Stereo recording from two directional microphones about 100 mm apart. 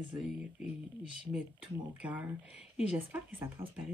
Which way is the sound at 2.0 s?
15° right (ahead or behind).